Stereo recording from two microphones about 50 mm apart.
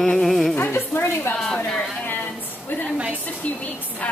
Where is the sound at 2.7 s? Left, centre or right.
Left.